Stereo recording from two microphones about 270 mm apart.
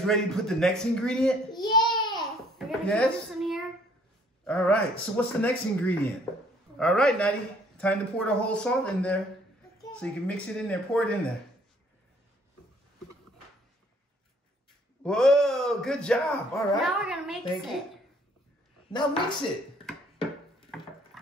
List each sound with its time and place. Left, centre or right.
0.0 s a man's voice: centre
1.6 s a sound: centre
2.1 s babbling: centre
4.5 s a man's voice: centre
15.0 s a man's voice: centre
18.9 s a woman's voice: centre